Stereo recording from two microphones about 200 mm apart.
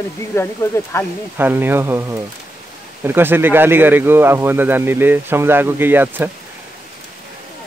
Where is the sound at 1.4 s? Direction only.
10° right (ahead or behind).